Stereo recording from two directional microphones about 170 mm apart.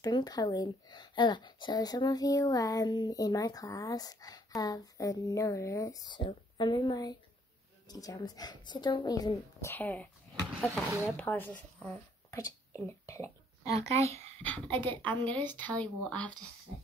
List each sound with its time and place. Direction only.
0.0 s speech: 25° left (ahead or behind)
11.1 s speech: 10° left (ahead or behind)
13.7 s speech: 40° right (ahead or behind)
14.4 s a woman's voice: 10° left (ahead or behind)